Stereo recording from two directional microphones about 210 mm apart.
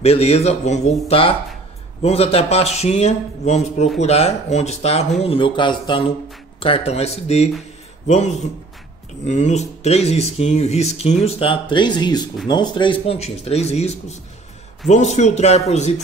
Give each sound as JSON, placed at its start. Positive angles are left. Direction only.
{"t": 0.0, "sound": "speech", "side_deg": 30}
{"t": 9.2, "sound": "speech", "side_deg": 35}